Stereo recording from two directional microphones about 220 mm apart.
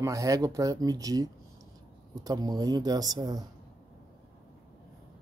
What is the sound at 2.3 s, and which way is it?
Speech, 15° right (ahead or behind).